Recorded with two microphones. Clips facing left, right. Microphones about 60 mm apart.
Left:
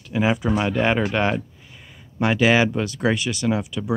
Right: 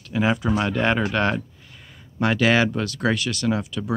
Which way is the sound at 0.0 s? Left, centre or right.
Centre.